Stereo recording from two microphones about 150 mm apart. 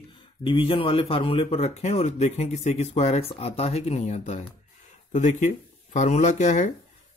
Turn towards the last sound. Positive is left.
turn(degrees=55)  # may be behind; listen again after turning